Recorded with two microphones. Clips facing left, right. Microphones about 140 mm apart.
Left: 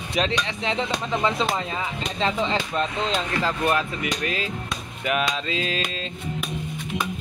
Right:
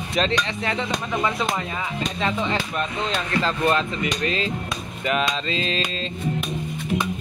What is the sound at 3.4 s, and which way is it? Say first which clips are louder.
Speech: right 2 dB; 10° left (ahead or behind).